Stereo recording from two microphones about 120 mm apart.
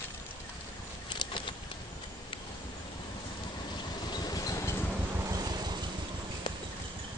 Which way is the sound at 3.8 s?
35° left (ahead or behind).